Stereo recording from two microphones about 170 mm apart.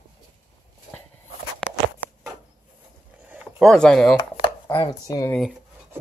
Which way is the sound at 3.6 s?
5° left (ahead or behind).